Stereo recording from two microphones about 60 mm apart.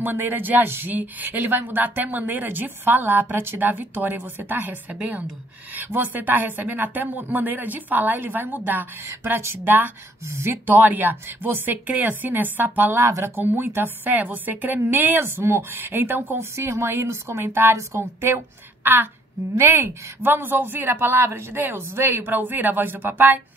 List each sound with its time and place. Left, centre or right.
0.0 s a woman's voice: right
9.0 s a woman's voice: right
10.7 s speech: right
13.0 s a woman's voice: right
13.5 s speech: right
15.1 s speech: right
16.3 s a woman's voice: right
18.8 s speech: right